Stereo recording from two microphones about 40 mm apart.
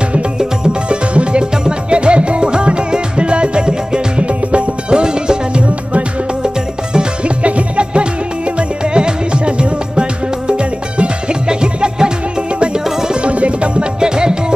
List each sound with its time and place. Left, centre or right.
0.4 s music: right
7.4 s music: right
13.1 s music: right